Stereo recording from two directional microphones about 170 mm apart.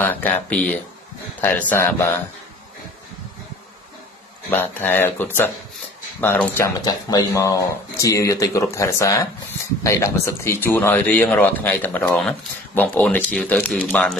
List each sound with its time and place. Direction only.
0.0 s speech: 10° left (ahead or behind)
4.5 s speech: 10° left (ahead or behind)